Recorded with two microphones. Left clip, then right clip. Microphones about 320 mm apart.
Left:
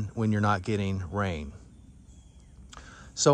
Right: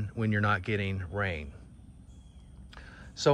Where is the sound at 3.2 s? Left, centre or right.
Left.